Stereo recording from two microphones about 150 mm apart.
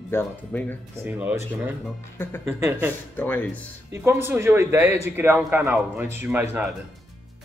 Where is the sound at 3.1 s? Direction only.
10° left (ahead or behind).